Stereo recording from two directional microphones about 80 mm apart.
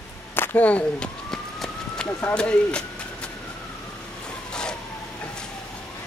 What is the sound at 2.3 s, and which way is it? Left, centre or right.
Speech, centre.